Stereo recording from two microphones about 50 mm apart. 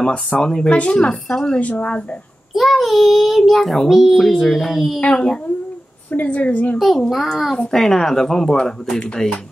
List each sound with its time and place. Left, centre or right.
0.0 s speech: centre
1.6 s speech: left
2.5 s a child's voice: centre
5.1 s speech: centre
6.1 s speech: left
7.1 s a child's voice: centre